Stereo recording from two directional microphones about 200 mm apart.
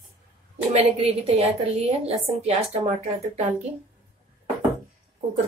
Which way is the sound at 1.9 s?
30° right (ahead or behind).